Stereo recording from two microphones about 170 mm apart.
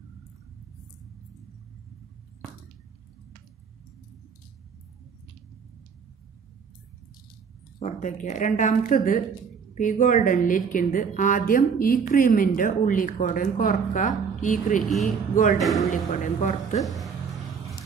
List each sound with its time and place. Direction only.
7.8 s a woman's voice: 45° left (ahead or behind)
14.8 s speech: centre (ahead or behind)
16.1 s a woman's voice: 45° left (ahead or behind)
16.8 s a sound: centre (ahead or behind)